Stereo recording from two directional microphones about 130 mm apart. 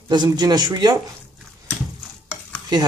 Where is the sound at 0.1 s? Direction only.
35° right (ahead or behind).